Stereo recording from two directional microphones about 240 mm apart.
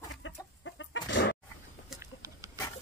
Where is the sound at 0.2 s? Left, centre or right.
Left.